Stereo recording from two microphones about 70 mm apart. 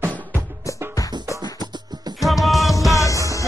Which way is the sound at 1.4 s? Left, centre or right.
Right.